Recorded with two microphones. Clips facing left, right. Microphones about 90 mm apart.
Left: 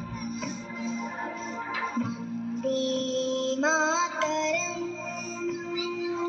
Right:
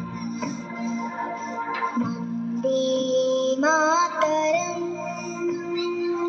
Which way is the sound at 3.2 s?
35° right (ahead or behind).